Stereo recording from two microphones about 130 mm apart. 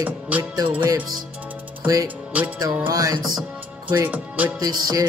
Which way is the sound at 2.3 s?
10° right (ahead or behind).